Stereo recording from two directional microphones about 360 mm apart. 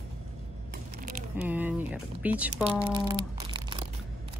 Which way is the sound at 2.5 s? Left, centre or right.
Centre.